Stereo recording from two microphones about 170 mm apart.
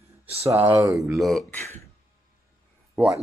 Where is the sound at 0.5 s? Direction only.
15° right (ahead or behind).